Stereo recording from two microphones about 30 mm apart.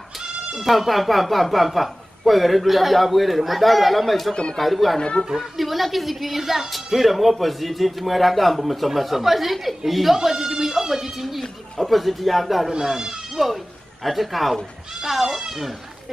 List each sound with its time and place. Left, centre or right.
0.7 s a man's voice: centre
5.2 s speech: left
5.6 s a man's voice: centre
12.8 s speech: centre
14.0 s a man's voice: centre
15.2 s speech: centre